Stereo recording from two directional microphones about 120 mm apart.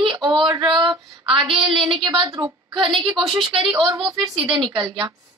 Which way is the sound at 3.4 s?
45° right (ahead or behind).